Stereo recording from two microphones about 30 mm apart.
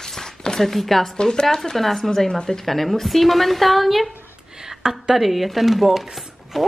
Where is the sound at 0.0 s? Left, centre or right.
Centre.